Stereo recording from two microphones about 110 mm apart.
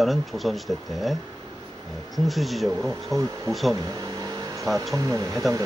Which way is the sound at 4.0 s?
35° right (ahead or behind).